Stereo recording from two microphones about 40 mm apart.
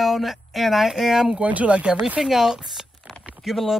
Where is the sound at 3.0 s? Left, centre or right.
Right.